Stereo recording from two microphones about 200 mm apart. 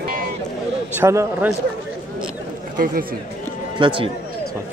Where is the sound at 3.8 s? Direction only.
25° right (ahead or behind).